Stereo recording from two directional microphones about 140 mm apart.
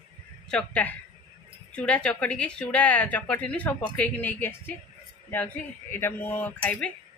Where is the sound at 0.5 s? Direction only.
10° left (ahead or behind).